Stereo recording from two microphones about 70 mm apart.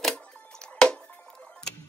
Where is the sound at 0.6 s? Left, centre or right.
Centre.